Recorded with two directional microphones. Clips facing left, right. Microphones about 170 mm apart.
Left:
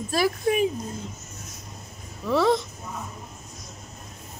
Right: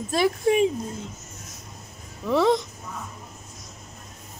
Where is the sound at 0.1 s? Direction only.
25° right (ahead or behind).